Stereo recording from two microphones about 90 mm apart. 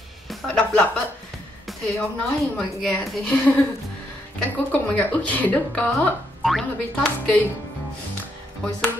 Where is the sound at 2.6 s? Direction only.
5° left (ahead or behind).